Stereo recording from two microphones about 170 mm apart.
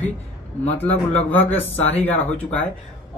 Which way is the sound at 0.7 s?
10° left (ahead or behind).